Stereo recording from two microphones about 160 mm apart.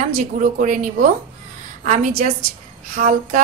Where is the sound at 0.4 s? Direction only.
50° right (ahead or behind).